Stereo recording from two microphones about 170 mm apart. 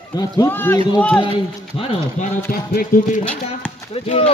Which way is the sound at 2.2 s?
40° left (ahead or behind).